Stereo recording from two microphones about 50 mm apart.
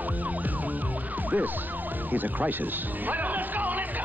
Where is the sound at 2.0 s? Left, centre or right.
Right.